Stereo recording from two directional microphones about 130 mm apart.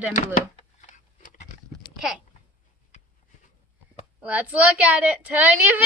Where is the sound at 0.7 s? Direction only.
80° left.